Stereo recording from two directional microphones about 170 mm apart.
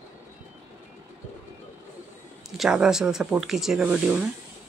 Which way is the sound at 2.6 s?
5° right (ahead or behind).